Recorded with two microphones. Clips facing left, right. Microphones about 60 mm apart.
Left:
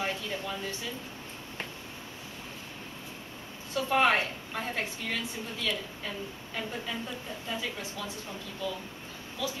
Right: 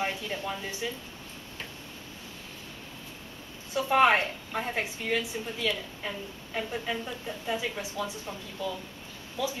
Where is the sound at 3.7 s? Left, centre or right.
Centre.